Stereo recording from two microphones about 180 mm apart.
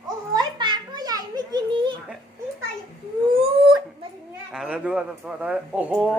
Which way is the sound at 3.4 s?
30° right (ahead or behind).